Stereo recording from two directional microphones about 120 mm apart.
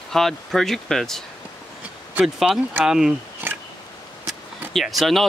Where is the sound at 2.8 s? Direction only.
5° right (ahead or behind).